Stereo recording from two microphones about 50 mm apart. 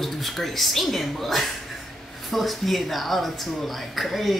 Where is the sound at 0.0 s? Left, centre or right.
Centre.